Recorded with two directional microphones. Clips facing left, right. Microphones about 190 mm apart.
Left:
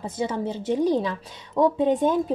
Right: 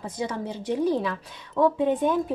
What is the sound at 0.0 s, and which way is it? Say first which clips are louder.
Speech: left 3 dB; 25° left (ahead or behind).